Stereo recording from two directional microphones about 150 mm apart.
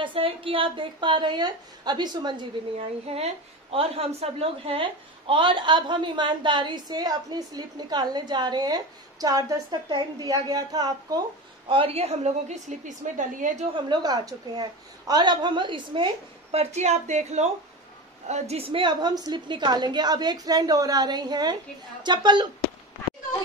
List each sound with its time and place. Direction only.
0.0 s a woman's voice: 35° right (ahead or behind)
3.1 s a woman's voice: 40° right (ahead or behind); by 11.2 s 25° right (ahead or behind)
11.7 s a woman's voice: 40° right (ahead or behind); by 13.7 s 60° right (ahead or behind)
13.7 s a woman's voice: 30° right (ahead or behind)
16.5 s a woman's voice: 50° right (ahead or behind); by 22.5 s 30° right (ahead or behind)